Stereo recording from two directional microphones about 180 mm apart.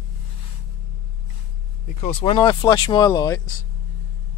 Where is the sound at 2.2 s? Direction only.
30° left (ahead or behind).